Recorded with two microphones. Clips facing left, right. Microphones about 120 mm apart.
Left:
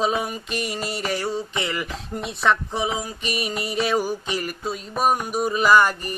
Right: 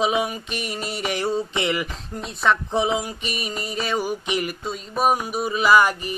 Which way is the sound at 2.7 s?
25° right (ahead or behind).